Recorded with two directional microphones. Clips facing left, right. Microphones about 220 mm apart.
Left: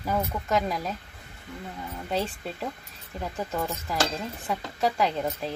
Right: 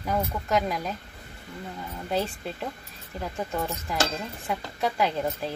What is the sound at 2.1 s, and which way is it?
Speech, centre (ahead or behind).